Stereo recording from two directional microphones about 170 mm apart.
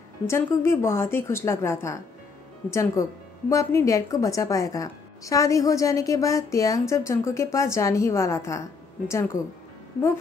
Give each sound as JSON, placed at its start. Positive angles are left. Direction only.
{"t": 0.3, "sound": "a woman's voice", "side_deg": 15}